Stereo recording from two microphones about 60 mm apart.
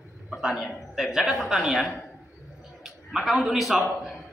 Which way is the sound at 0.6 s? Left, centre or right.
Centre.